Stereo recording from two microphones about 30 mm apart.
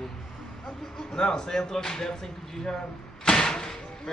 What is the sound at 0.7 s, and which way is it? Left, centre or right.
Speech, centre.